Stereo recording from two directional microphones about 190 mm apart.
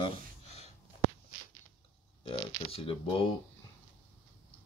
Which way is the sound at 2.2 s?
30° left (ahead or behind).